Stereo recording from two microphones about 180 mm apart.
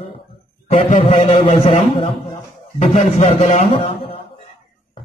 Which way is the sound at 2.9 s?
40° left (ahead or behind).